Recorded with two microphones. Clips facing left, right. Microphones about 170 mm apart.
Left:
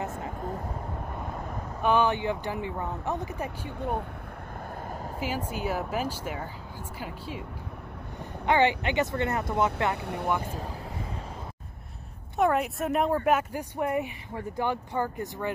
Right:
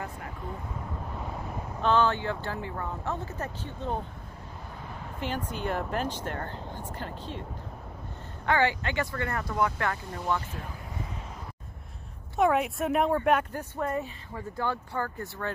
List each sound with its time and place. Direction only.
1.8 s speech: 15° left (ahead or behind)
5.2 s speech: 5° left (ahead or behind)
8.5 s speech: 20° left (ahead or behind)
10.0 s speech: 65° left (ahead or behind)
12.4 s speech: centre (ahead or behind); by 15.5 s 15° left (ahead or behind)